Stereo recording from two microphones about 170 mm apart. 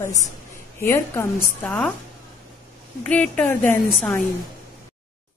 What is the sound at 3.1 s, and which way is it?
Speech, 10° left (ahead or behind).